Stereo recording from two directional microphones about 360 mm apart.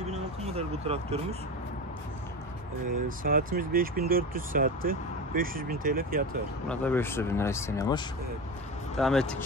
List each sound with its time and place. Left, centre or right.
0.1 s vehicle: centre
3.3 s speech: right
6.7 s speech: centre